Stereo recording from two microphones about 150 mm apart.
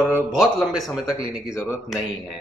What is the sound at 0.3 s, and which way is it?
Speech, centre (ahead or behind).